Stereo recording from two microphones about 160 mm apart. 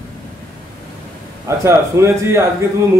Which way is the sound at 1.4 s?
15° right (ahead or behind).